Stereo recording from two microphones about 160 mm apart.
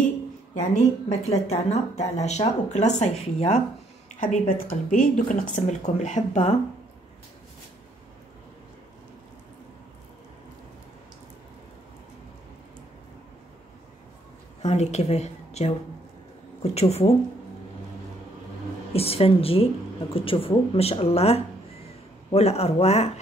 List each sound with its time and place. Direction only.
0.6 s speech: 45° left (ahead or behind)
4.2 s speech: 60° left (ahead or behind)
14.6 s a woman's voice: 45° left (ahead or behind)
16.7 s speech: 40° left (ahead or behind)
18.9 s speech: 40° left (ahead or behind)